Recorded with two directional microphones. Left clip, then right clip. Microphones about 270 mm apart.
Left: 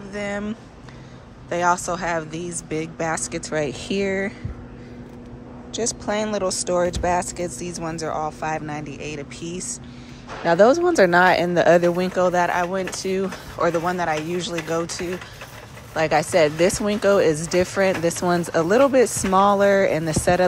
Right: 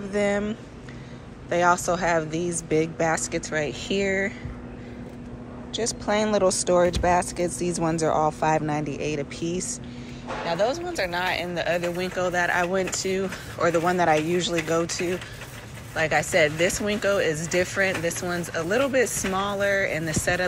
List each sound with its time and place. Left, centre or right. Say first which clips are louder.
0.1 s speech: right 4 dB; centre
5.7 s speech: left 1 dB; centre
10.5 s speech: left 10 dB; left